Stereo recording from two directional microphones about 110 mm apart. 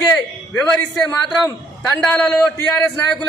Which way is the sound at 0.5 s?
5° left (ahead or behind).